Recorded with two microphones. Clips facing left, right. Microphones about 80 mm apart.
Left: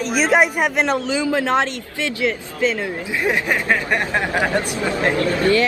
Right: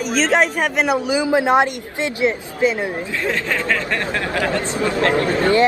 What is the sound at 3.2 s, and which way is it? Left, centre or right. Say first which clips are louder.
Speech: left 2 dB; centre.